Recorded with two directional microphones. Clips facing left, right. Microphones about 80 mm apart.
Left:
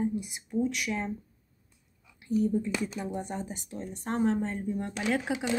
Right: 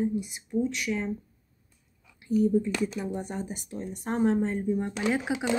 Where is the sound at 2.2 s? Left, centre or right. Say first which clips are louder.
Right 3 dB; centre.